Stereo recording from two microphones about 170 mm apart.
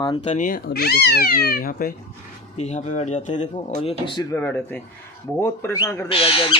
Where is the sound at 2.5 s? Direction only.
40° left (ahead or behind).